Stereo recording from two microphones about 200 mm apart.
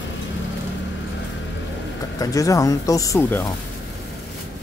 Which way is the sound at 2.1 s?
15° left (ahead or behind).